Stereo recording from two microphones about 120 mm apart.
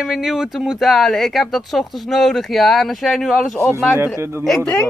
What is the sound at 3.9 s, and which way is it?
Speech, 20° right (ahead or behind).